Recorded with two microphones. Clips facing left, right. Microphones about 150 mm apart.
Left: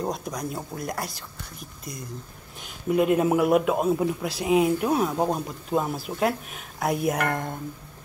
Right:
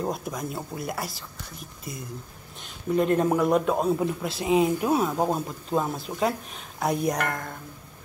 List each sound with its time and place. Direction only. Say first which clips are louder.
0.0 s speech: even; 5° right (ahead or behind)
2.6 s speech: left 2 dB; 10° left (ahead or behind)
7.2 s speech: left 4 dB; 25° left (ahead or behind)